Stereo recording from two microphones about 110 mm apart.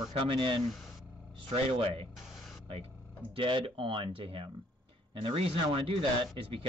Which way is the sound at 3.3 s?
50° right (ahead or behind).